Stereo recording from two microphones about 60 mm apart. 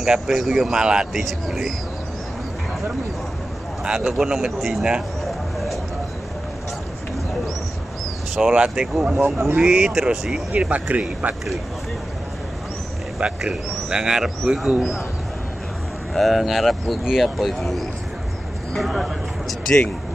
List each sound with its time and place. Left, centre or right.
0.0 s speech: centre
0.7 s speech: centre
1.2 s speech: centre
3.8 s a man's voice: centre
5.2 s a sound: centre
8.4 s speech: centre
9.2 s speech: right
9.6 s speech: centre
10.5 s speech: right
13.4 s speech: centre
16.1 s speech: centre
18.8 s a sound: centre